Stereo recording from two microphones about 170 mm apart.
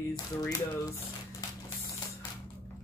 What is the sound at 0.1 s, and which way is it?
Speech, 20° left (ahead or behind).